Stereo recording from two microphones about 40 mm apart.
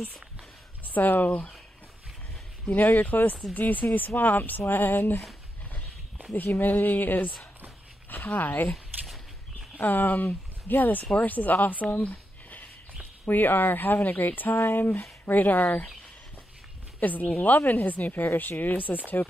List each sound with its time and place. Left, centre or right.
0.8 s speech: left
2.7 s speech: left
6.3 s speech: left
9.8 s speech: left
12.0 s a sound: left
13.3 s speech: left
17.0 s speech: left